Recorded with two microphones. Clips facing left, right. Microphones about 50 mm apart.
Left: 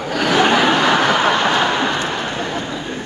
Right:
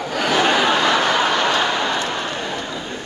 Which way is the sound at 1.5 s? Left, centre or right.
Left.